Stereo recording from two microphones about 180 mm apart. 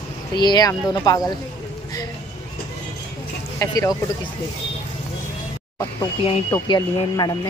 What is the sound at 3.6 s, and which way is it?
Speech, 20° left (ahead or behind).